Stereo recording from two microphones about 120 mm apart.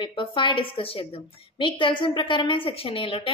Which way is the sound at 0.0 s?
45° left (ahead or behind).